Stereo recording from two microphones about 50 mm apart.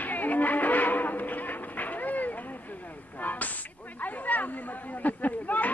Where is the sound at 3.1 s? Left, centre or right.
Left.